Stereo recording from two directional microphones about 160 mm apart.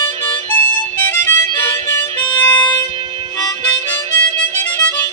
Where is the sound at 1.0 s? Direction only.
15° left (ahead or behind).